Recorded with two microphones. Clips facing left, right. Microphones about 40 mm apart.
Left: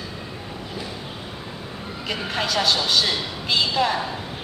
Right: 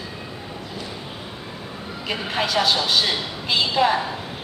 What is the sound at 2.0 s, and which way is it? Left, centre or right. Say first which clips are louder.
A man's voice: right 1 dB; centre.